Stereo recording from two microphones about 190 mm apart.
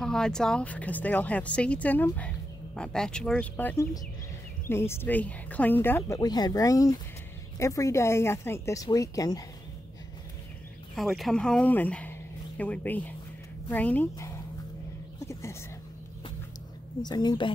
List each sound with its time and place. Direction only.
0.0 s speech: 5° left (ahead or behind)
11.0 s speech: centre (ahead or behind); by 14.4 s 15° left (ahead or behind)
15.1 s a sound: 15° left (ahead or behind)
17.0 s a woman's voice: 20° left (ahead or behind)